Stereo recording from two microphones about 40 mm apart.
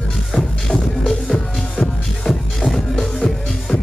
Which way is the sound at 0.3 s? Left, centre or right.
Centre.